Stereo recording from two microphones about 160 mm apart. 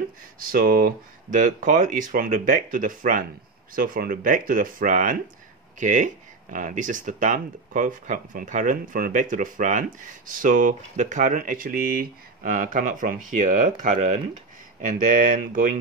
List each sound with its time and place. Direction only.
0.4 s speech: 65° right (ahead or behind)